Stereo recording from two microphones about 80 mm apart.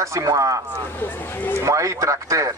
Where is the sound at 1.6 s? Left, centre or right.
Right.